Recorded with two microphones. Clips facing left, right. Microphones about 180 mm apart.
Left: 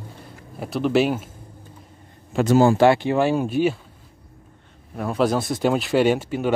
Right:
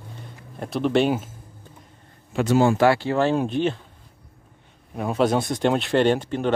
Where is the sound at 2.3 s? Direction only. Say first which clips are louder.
Left 3 dB; 45° left (ahead or behind).